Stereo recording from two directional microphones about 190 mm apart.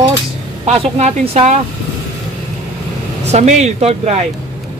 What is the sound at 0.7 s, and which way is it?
Speech, 35° right (ahead or behind).